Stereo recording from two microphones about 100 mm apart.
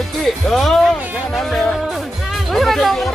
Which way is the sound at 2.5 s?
Centre (ahead or behind).